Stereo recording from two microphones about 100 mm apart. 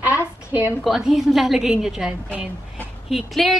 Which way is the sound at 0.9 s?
5° right (ahead or behind).